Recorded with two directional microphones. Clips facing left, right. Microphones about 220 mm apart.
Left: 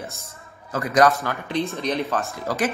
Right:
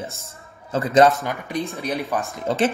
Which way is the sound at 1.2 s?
15° right (ahead or behind).